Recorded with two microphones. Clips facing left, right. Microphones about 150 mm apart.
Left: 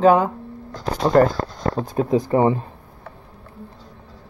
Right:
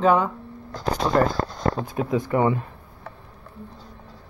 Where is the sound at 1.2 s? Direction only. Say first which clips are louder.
Left 6 dB; 55° left (ahead or behind).